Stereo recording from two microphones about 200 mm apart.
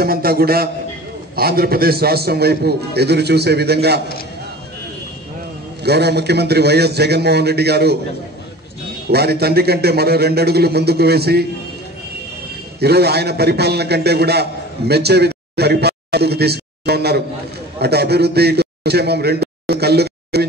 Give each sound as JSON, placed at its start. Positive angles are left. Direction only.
{"t": 0.0, "sound": "a man's voice", "side_deg": -50}
{"t": 5.9, "sound": "a man's voice", "side_deg": -55}
{"t": 9.1, "sound": "a man's voice", "side_deg": -55}
{"t": 12.8, "sound": "a man's voice", "side_deg": -55}